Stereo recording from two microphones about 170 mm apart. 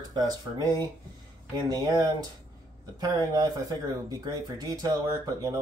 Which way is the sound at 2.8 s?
20° right (ahead or behind).